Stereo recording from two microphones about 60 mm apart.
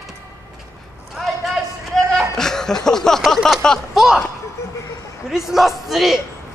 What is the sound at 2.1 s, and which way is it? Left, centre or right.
Chuckle, centre.